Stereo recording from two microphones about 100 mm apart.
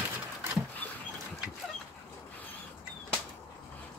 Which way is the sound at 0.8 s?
20° left (ahead or behind).